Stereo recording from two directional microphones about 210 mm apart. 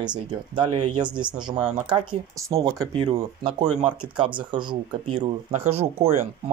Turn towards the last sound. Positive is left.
turn(degrees=-30)  # may be behind; listen again after turning